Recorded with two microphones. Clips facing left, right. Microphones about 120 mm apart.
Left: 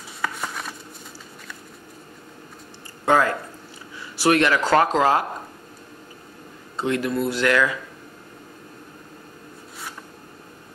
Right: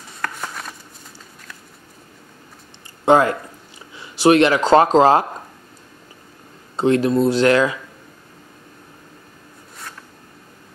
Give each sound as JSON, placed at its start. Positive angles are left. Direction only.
{"t": 0.2, "sound": "a sound", "side_deg": 0}
{"t": 3.1, "sound": "speech", "side_deg": -20}
{"t": 6.8, "sound": "speech", "side_deg": -30}